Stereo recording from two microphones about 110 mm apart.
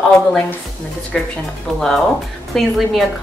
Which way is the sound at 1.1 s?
Centre (ahead or behind).